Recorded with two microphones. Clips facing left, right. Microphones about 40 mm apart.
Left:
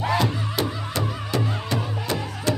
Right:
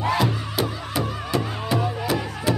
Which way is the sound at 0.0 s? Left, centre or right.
Centre.